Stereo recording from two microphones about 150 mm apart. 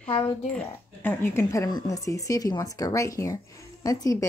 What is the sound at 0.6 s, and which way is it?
A woman's voice, 15° left (ahead or behind).